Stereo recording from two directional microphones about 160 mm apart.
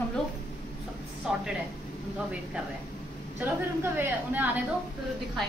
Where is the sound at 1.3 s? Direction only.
5° right (ahead or behind).